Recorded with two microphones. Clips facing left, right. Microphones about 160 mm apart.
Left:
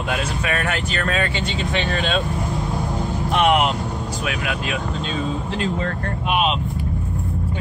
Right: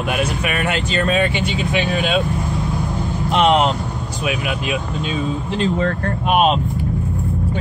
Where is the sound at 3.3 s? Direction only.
25° right (ahead or behind).